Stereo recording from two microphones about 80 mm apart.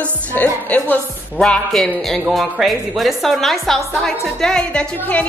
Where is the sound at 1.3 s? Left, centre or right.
Centre.